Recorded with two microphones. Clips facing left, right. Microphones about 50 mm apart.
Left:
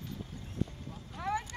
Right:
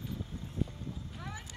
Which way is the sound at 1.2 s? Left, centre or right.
Left.